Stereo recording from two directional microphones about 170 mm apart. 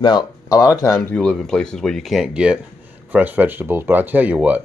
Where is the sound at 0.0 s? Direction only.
25° left (ahead or behind).